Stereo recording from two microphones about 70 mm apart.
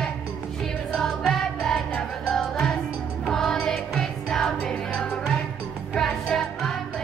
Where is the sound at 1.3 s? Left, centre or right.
Centre.